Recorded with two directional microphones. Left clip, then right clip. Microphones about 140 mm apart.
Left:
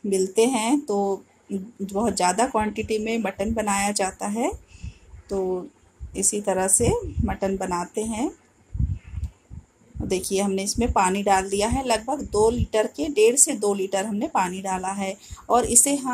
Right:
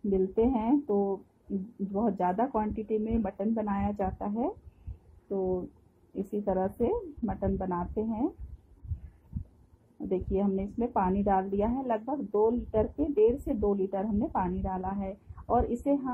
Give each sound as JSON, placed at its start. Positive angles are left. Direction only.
{"t": 0.1, "sound": "a woman's voice", "side_deg": 20}
{"t": 0.9, "sound": "speech", "side_deg": 35}
{"t": 1.9, "sound": "a woman's voice", "side_deg": 20}
{"t": 10.0, "sound": "a woman's voice", "side_deg": 20}